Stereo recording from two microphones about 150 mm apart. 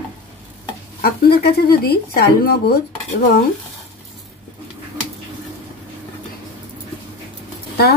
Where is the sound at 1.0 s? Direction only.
90° left.